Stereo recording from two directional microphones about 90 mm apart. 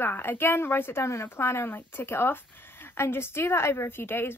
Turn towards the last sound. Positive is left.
turn(degrees=25)  # may be behind; listen again after turning